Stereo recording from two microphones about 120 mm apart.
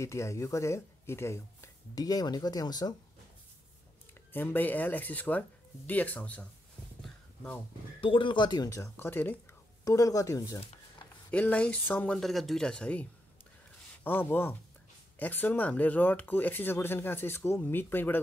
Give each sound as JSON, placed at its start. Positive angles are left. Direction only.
{"t": 0.0, "sound": "speech", "side_deg": 25}
{"t": 4.3, "sound": "speech", "side_deg": 15}
{"t": 8.0, "sound": "speech", "side_deg": 45}
{"t": 9.8, "sound": "speech", "side_deg": 30}
{"t": 11.2, "sound": "speech", "side_deg": 10}
{"t": 14.0, "sound": "speech", "side_deg": 15}